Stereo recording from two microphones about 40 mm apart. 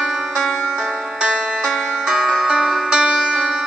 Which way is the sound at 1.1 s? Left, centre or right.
Right.